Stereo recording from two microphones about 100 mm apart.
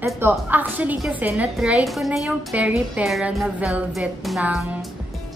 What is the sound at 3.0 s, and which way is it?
A woman's voice, 15° right (ahead or behind).